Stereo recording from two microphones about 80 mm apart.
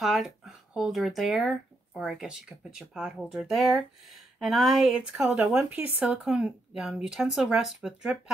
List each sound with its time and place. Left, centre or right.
0.0 s speech: centre
5.7 s speech: right
6.0 s speech: centre